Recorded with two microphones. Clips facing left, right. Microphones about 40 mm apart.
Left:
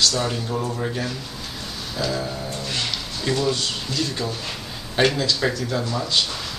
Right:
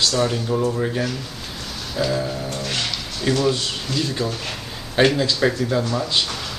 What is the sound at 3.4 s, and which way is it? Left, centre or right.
A woman's voice, centre.